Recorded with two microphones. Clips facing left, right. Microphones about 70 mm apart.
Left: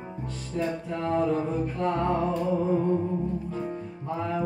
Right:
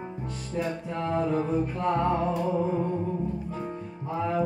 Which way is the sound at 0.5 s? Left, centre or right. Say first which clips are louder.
Left 1 dB; centre.